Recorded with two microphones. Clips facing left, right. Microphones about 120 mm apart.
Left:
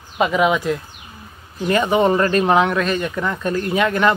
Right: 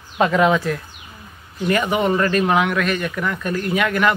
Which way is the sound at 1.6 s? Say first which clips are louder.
Left 3 dB; 25° left (ahead or behind).